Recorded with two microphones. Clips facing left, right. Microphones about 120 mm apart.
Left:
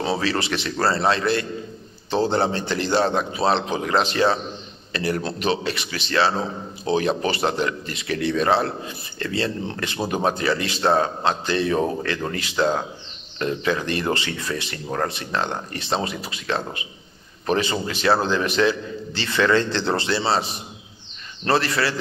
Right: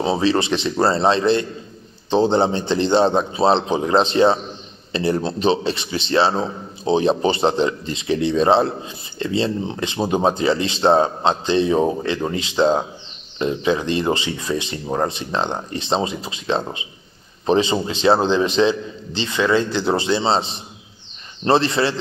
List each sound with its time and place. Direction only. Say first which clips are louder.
0.0 s a man's voice: right 5 dB; 20° right (ahead or behind)